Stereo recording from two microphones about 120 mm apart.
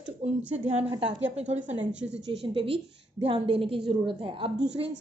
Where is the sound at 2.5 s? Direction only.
50° right (ahead or behind).